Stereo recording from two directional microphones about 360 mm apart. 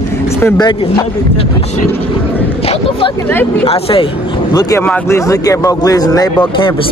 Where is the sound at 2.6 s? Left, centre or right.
Centre.